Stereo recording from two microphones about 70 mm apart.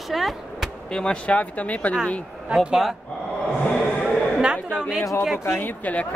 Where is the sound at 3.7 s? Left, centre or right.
Centre.